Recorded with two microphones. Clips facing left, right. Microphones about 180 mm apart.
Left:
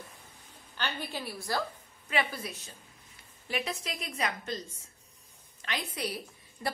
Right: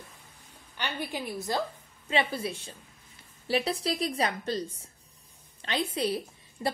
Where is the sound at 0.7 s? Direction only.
15° right (ahead or behind).